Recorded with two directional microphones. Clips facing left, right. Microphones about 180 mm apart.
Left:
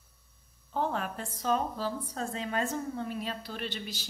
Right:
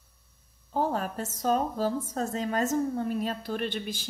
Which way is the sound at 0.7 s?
40° right (ahead or behind).